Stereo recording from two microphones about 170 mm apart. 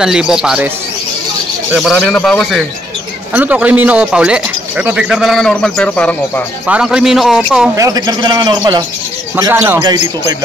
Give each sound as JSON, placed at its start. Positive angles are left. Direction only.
{"t": 0.0, "sound": "speech", "side_deg": -5}
{"t": 1.8, "sound": "speech", "side_deg": 0}
{"t": 3.3, "sound": "speech", "side_deg": -10}
{"t": 6.7, "sound": "speech", "side_deg": -5}
{"t": 7.7, "sound": "a man's voice", "side_deg": -20}
{"t": 9.4, "sound": "a man's voice", "side_deg": -15}